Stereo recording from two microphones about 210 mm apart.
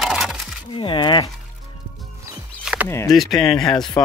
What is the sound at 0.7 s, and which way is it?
Speech, 25° left (ahead or behind).